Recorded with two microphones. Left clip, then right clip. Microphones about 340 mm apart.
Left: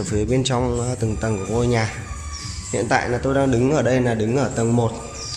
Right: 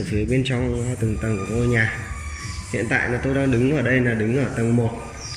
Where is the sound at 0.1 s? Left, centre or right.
Left.